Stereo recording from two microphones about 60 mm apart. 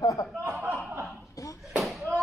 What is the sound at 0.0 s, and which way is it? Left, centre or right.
Chuckle, left.